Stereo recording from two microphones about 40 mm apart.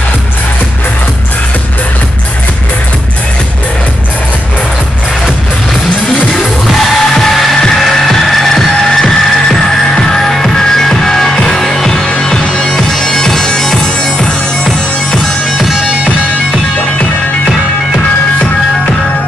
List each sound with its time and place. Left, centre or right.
5.7 s music: centre
12.5 s bagpipes: centre
15.5 s music: centre